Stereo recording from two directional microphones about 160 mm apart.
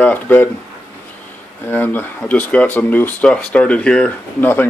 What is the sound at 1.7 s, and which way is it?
Speech, 10° left (ahead or behind).